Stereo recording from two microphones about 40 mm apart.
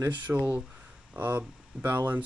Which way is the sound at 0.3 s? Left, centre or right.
Right.